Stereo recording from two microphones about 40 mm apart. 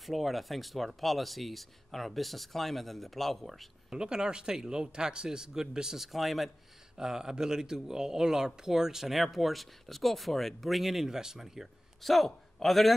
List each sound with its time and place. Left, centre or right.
0.0 s speech: centre
3.9 s speech: centre
5.9 s speech: centre
7.0 s speech: centre
12.0 s a man's voice: centre